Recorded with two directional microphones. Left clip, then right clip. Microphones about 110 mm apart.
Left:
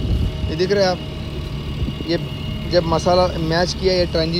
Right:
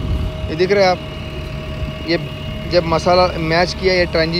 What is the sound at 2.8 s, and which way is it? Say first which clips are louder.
Speech: right 3 dB; 25° right (ahead or behind).